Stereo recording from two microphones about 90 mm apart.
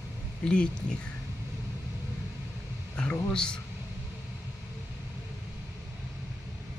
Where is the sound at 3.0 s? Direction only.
10° left (ahead or behind).